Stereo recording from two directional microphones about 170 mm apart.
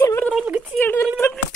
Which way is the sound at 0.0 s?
10° left (ahead or behind).